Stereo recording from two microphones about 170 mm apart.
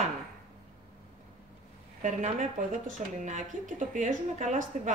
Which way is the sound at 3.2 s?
50° right (ahead or behind).